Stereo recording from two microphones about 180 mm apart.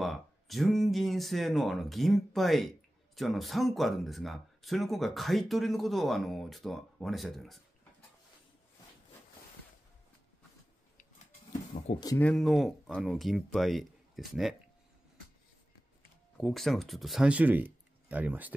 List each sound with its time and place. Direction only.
0.0 s speech: centre (ahead or behind)
11.9 s speech: 20° left (ahead or behind)
12.2 s speech: 5° left (ahead or behind)
16.3 s speech: centre (ahead or behind)